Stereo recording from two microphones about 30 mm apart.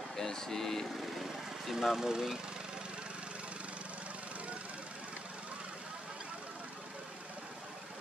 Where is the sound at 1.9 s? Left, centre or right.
Centre.